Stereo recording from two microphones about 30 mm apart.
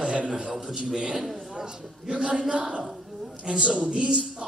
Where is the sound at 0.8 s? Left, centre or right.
Right.